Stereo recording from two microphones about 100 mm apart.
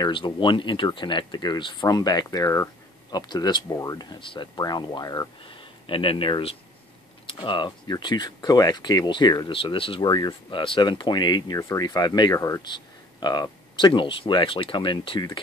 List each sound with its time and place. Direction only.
0.0 s speech: 50° left (ahead or behind)
3.6 s speech: 30° left (ahead or behind)
5.4 s speech: 60° left (ahead or behind); by 9.5 s 45° left (ahead or behind)
9.5 s speech: 60° left (ahead or behind)
10.0 s speech: 45° left (ahead or behind)
12.6 s speech: 45° left (ahead or behind)